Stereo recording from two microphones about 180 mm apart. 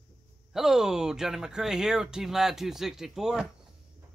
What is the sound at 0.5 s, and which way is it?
Speech, centre (ahead or behind).